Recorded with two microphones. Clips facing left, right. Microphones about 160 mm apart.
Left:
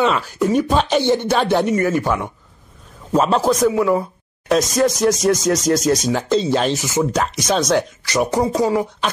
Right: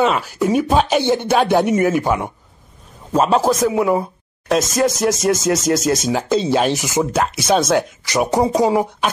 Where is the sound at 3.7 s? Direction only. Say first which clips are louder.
Even; 20° right (ahead or behind).